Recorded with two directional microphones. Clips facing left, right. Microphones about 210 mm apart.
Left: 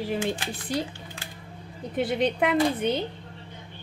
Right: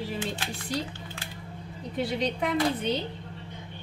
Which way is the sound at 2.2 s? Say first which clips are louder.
Left 4 dB; 55° left (ahead or behind).